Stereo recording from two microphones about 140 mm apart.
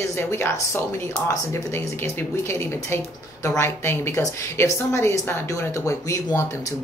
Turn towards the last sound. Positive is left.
turn(degrees=20)  # may be behind; listen again after turning